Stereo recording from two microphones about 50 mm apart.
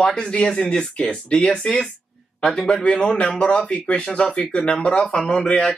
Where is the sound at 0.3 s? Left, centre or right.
Left.